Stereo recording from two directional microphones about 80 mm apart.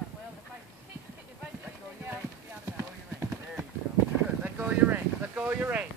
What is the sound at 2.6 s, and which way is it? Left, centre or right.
Clip-clop, right.